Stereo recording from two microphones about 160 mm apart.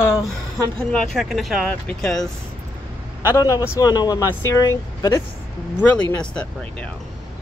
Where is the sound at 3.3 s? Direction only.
20° left (ahead or behind).